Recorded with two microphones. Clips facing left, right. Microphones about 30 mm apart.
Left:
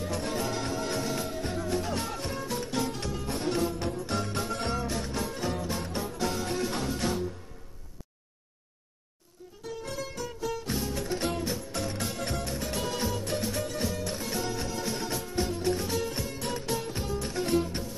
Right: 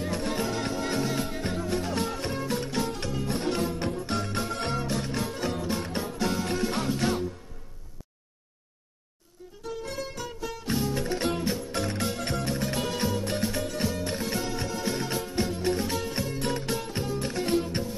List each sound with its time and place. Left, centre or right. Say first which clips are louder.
0.0 s music: right 2 dB; right
10.7 s music: right 3 dB; right